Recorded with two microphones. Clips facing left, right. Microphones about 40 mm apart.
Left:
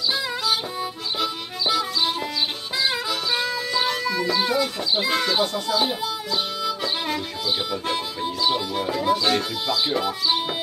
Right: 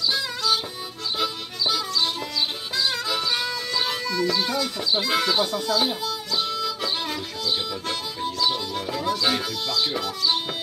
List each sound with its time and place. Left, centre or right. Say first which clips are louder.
0.1 s music: left 2 dB; centre
4.0 s speech: left 1 dB; centre
5.1 s speech: right 2 dB; centre
5.7 s music: left 1 dB; centre
7.8 s speech: left 2 dB; centre